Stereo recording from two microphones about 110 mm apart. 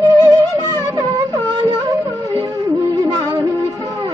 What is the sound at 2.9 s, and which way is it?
Music, 35° right (ahead or behind).